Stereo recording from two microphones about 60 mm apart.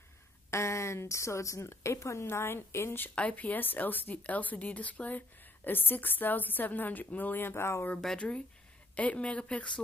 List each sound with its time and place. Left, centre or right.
0.5 s a woman's voice: left
3.2 s a woman's voice: left
8.9 s speech: left